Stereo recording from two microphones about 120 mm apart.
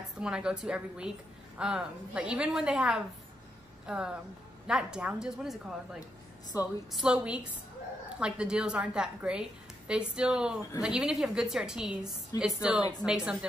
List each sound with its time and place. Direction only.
0.2 s a woman's voice: 5° right (ahead or behind)
6.5 s a woman's voice: 25° left (ahead or behind)
6.9 s a woman's voice: 5° right (ahead or behind)
12.3 s a woman's voice: 30° left (ahead or behind)
13.0 s a woman's voice: 5° right (ahead or behind)